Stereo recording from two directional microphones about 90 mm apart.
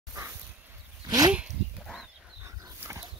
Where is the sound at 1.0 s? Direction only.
45° right (ahead or behind).